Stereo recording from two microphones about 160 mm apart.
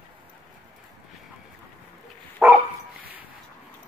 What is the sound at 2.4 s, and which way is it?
Dog, 5° right (ahead or behind).